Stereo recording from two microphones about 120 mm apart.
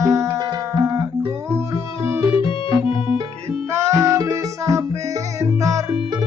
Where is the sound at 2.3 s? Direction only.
45° left (ahead or behind).